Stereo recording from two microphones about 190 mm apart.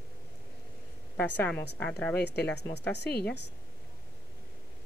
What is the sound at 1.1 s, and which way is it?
A woman's voice, 10° left (ahead or behind).